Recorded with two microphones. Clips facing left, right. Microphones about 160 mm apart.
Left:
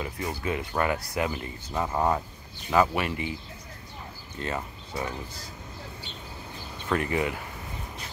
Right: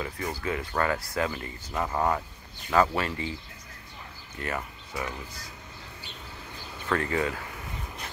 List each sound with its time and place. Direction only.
0.0 s speech: 20° left (ahead or behind)
4.4 s speech: 25° left (ahead or behind)
6.8 s speech: 20° left (ahead or behind)